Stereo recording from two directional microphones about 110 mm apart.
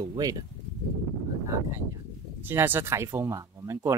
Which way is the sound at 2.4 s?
20° right (ahead or behind).